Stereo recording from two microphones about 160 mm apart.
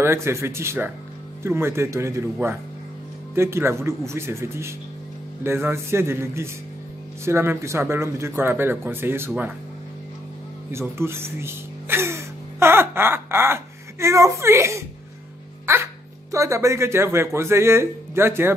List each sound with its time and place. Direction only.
0.0 s speech: 15° right (ahead or behind)
3.3 s speech: 15° right (ahead or behind)
10.7 s a sound: 15° right (ahead or behind)
15.6 s speech: 15° right (ahead or behind)